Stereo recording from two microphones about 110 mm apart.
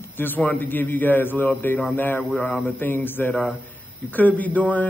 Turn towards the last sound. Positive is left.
turn(degrees=15)  # may be behind; listen again after turning